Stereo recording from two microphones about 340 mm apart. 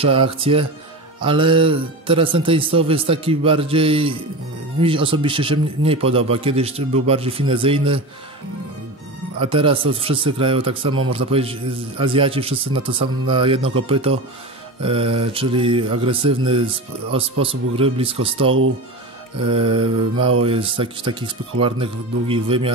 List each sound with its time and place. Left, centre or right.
0.0 s speech: centre
9.4 s speech: centre